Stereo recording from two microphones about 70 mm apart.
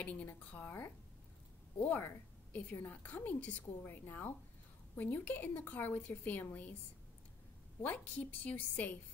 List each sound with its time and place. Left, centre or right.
0.0 s a woman's voice: left
7.8 s a woman's voice: left